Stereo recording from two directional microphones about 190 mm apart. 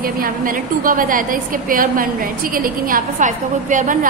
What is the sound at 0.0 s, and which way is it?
A woman's voice, 45° right (ahead or behind).